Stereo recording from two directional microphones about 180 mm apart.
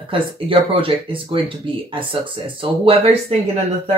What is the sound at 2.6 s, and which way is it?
Speech, 30° right (ahead or behind).